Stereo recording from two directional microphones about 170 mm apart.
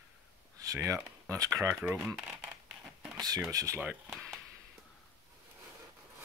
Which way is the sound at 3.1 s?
20° right (ahead or behind).